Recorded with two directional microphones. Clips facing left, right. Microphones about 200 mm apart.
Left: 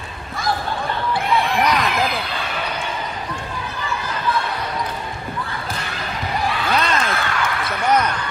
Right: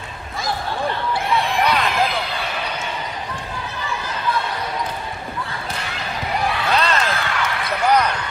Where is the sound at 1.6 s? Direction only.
30° right (ahead or behind).